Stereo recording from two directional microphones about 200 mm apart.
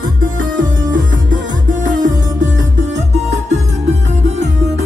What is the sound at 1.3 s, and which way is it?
Music, 40° right (ahead or behind).